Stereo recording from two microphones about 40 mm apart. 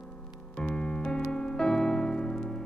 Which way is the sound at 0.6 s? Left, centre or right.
Left.